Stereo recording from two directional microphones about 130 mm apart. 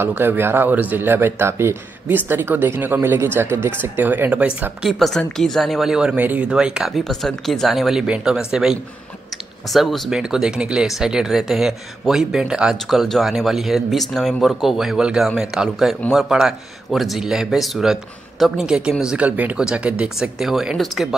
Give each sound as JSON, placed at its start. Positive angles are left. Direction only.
{"t": 0.0, "sound": "speech", "side_deg": -15}
{"t": 4.8, "sound": "speech", "side_deg": 0}